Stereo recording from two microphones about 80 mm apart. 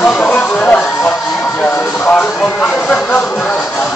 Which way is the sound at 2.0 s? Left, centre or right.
Centre.